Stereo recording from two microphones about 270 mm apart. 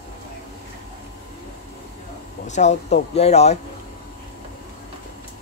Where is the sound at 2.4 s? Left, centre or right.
Left.